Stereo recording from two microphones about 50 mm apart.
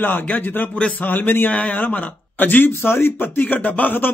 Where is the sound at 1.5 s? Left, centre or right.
Left.